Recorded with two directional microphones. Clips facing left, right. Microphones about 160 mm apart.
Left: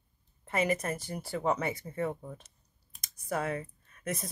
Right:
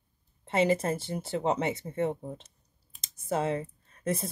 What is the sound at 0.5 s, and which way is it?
Speech, 25° right (ahead or behind).